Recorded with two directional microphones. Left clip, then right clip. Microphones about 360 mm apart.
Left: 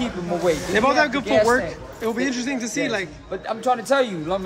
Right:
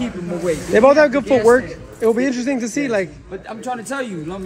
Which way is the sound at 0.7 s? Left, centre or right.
Centre.